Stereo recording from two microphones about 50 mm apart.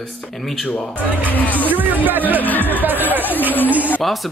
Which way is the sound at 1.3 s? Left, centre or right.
Left.